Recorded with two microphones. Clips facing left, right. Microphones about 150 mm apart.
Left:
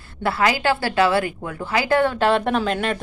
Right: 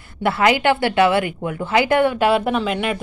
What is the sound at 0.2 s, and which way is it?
A woman's voice, 20° right (ahead or behind).